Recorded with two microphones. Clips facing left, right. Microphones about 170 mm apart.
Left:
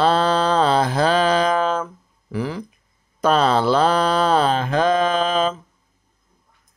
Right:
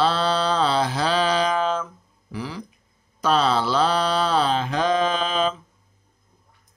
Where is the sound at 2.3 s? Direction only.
50° left (ahead or behind).